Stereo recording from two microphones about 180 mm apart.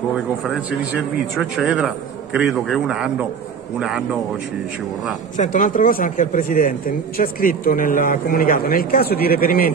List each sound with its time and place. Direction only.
1.3 s a man's voice: centre (ahead or behind)
5.4 s speech: 45° left (ahead or behind)